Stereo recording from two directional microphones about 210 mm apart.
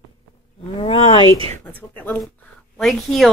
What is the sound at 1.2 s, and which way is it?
Speech, 25° right (ahead or behind).